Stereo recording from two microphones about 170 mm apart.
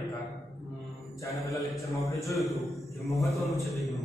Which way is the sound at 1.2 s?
20° left (ahead or behind).